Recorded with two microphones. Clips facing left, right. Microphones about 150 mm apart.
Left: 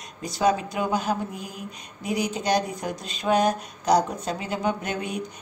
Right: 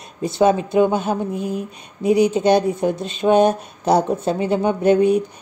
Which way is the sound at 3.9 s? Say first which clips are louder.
Right 5 dB; 25° right (ahead or behind).